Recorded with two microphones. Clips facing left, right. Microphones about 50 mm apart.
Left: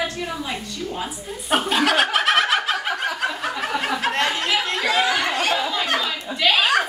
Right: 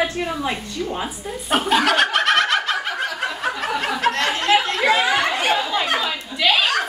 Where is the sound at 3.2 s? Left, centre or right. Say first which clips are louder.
Right 1 dB; centre.